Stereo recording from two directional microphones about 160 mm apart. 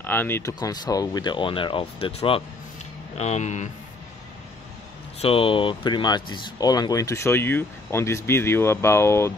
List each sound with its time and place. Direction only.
0.0 s speech: 10° left (ahead or behind); by 2.4 s 35° left (ahead or behind)
3.2 s speech: 45° left (ahead or behind)
5.2 s speech: 35° left (ahead or behind); by 9.3 s 15° left (ahead or behind)